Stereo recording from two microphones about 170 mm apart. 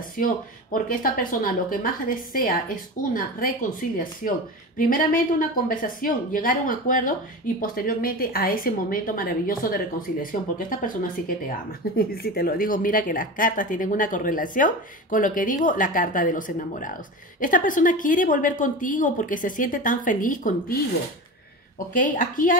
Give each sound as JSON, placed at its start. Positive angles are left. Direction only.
{"t": 0.2, "sound": "speech", "side_deg": 55}
{"t": 4.7, "sound": "speech", "side_deg": 55}